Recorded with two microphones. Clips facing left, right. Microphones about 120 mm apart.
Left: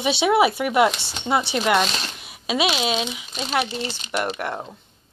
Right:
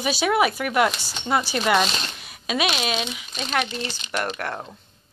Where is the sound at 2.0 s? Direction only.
5° left (ahead or behind).